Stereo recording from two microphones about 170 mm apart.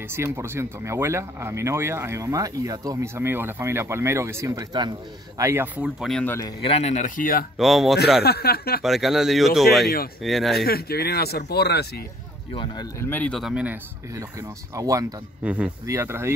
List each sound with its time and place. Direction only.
0.1 s speech: 15° right (ahead or behind)
6.0 s speech: 5° left (ahead or behind)
6.6 s speech: 40° left (ahead or behind); by 7.4 s 55° left (ahead or behind)
7.5 s speech: centre (ahead or behind)
8.2 s speech: 70° left (ahead or behind)
8.8 s speech: centre (ahead or behind)
10.6 s speech: 65° left (ahead or behind)
13.0 s speech: 10° left (ahead or behind); by 13.7 s 5° right (ahead or behind)
14.8 s speech: 20° right (ahead or behind)
15.4 s speech: 10° right (ahead or behind)